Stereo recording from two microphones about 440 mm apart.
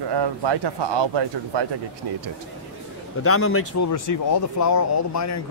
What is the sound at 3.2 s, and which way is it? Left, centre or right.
Speech, left.